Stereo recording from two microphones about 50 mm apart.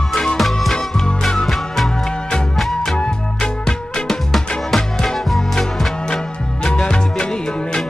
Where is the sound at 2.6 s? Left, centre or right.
Centre.